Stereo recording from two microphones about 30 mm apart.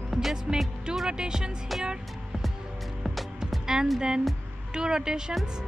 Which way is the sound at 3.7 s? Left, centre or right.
Right.